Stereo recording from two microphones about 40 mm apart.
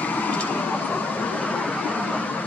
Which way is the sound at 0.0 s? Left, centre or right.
Left.